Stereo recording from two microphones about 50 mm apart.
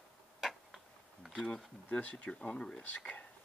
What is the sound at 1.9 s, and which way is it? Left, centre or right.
Speech, left.